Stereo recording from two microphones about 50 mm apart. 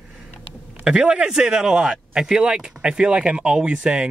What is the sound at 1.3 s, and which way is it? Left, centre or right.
Speech, centre.